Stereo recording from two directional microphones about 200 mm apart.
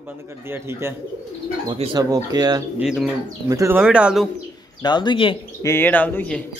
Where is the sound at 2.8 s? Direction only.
5° right (ahead or behind).